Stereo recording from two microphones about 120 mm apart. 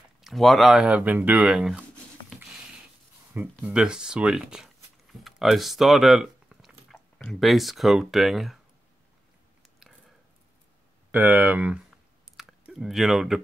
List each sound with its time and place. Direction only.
0.2 s speech: centre (ahead or behind)
3.3 s speech: 10° right (ahead or behind)
11.1 s speech: 15° right (ahead or behind)
12.4 s a sound: 5° right (ahead or behind)